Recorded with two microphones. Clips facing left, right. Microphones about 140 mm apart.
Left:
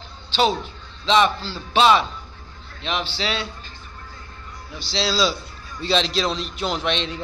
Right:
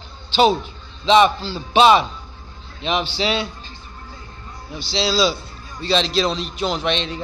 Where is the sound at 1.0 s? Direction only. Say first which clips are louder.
Right 4 dB; 10° right (ahead or behind).